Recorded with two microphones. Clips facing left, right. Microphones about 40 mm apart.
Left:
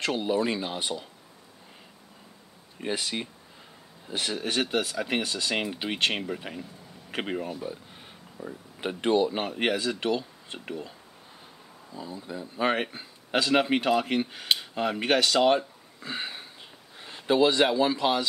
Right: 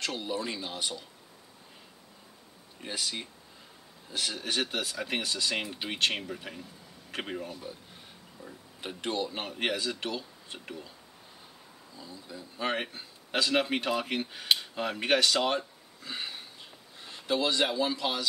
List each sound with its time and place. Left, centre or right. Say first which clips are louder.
0.0 s speech: left 7 dB; left
2.8 s speech: left 5 dB; left
4.4 s speech: left 6 dB; centre
8.8 s speech: left 9 dB; left
11.9 s speech: left 8 dB; left
12.6 s speech: left 5 dB; centre
16.0 s a sound: left 4 dB; left
17.0 s speech: left 7 dB; left